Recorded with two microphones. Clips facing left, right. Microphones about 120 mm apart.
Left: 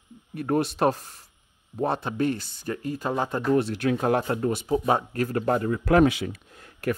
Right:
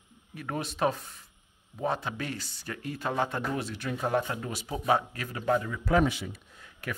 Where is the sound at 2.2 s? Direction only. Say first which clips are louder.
Left 11 dB; 50° left (ahead or behind).